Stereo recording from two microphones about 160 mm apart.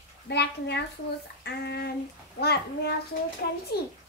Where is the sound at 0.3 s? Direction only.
90° left.